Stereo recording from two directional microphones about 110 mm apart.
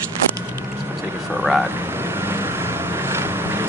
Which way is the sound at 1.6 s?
20° right (ahead or behind).